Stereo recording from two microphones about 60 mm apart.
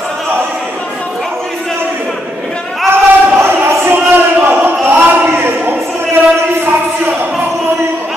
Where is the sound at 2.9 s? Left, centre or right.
Right.